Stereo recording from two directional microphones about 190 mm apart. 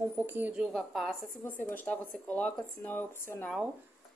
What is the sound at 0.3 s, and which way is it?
Speech, 10° right (ahead or behind).